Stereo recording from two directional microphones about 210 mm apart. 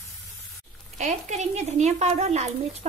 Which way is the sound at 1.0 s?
35° right (ahead or behind).